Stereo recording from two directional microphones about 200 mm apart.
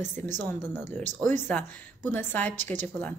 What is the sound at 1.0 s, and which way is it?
Speech, 35° right (ahead or behind).